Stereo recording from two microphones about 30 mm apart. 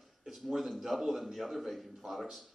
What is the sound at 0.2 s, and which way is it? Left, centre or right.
A man's voice, centre.